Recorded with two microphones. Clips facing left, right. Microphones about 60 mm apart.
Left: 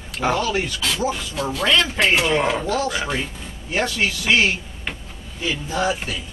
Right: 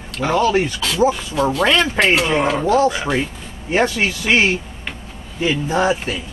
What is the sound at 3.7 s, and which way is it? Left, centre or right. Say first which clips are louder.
Speech: right 5 dB; right.